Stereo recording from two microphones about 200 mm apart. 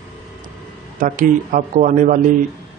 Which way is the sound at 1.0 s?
40° right (ahead or behind).